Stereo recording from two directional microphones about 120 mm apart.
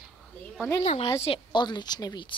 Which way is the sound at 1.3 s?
40° left (ahead or behind).